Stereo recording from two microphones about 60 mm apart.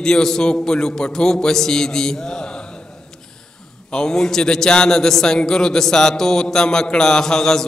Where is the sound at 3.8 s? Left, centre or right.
Centre.